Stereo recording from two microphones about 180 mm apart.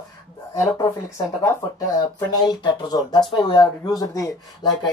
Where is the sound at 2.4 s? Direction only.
20° left (ahead or behind).